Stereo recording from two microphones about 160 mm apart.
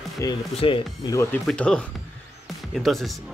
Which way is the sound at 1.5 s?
5° left (ahead or behind).